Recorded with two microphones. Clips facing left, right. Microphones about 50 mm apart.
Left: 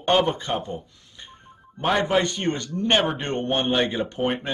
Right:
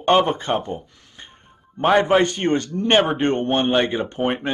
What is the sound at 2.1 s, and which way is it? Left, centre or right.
Speech, right.